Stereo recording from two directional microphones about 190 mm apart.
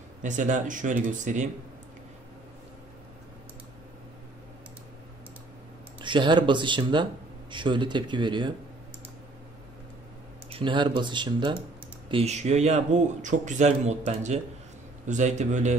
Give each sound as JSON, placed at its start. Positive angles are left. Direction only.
{"t": 0.2, "sound": "speech", "side_deg": -40}
{"t": 5.9, "sound": "speech", "side_deg": -25}
{"t": 10.5, "sound": "speech", "side_deg": -25}